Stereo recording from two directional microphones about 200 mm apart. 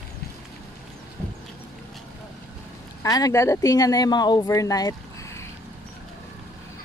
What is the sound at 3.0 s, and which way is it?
Speech, 15° left (ahead or behind).